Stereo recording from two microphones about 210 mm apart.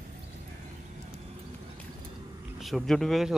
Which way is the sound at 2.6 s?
Centre (ahead or behind).